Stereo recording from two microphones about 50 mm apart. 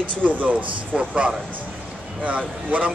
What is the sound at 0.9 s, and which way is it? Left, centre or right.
A man's voice, right.